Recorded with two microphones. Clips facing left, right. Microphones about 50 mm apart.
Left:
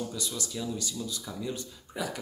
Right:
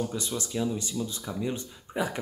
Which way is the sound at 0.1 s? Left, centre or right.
Right.